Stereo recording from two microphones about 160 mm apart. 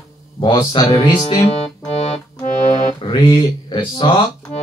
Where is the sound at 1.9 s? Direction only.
40° left (ahead or behind).